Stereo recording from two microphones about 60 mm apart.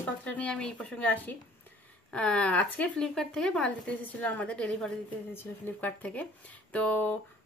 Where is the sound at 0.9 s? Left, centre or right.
Left.